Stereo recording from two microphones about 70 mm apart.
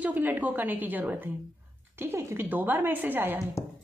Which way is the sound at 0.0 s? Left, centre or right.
Right.